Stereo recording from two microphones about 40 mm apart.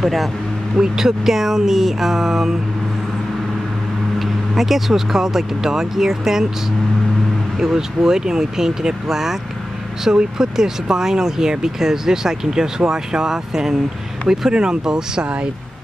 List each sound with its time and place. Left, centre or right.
0.0 s speech: centre
0.7 s speech: centre
4.2 s speech: centre
7.5 s speech: centre
14.5 s speech: right